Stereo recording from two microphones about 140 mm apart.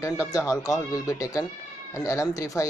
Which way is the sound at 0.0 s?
20° left (ahead or behind).